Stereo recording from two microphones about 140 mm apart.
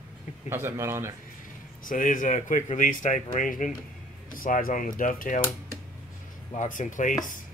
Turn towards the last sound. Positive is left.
turn(degrees=65)  # may be behind; listen again after turning